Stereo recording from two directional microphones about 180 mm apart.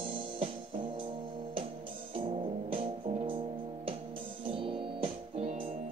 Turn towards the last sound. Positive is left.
turn(degrees=-35)  # may be behind; listen again after turning